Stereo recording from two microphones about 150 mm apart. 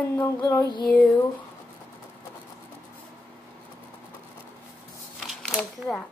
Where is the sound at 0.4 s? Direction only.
25° left (ahead or behind).